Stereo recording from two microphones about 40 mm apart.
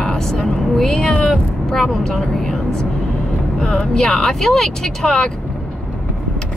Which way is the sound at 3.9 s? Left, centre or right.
Centre.